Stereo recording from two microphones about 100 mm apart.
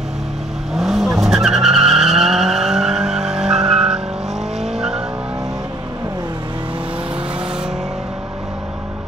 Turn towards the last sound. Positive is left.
turn(degrees=-5)  # may be behind; listen again after turning